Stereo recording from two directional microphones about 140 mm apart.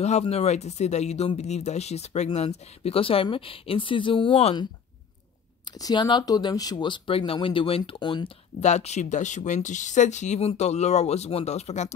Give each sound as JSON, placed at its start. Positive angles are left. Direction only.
{"t": 0.0, "sound": "speech", "side_deg": 50}
{"t": 5.8, "sound": "speech", "side_deg": 30}
{"t": 8.5, "sound": "speech", "side_deg": 55}